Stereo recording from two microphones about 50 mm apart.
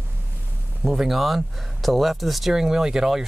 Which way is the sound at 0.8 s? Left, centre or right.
Centre.